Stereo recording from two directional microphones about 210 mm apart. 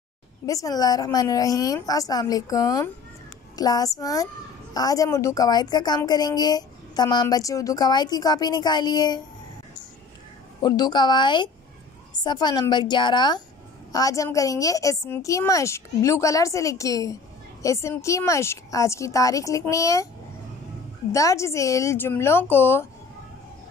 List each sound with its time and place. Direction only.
0.5 s a woman's voice: 15° left (ahead or behind)
10.6 s a woman's voice: 20° left (ahead or behind)
21.1 s a woman's voice: 15° left (ahead or behind)